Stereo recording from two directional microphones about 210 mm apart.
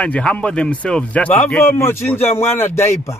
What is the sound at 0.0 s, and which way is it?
A man's voice, 5° left (ahead or behind).